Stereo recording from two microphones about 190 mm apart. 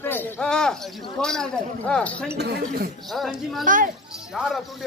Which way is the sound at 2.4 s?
60° right (ahead or behind).